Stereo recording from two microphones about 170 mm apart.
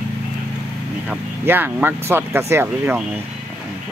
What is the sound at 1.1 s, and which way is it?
Speech, 10° right (ahead or behind).